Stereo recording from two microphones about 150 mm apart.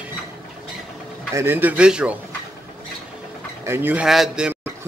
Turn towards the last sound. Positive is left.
turn(degrees=-5)  # may be behind; listen again after turning